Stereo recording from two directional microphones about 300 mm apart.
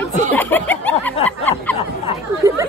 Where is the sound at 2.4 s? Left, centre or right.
Centre.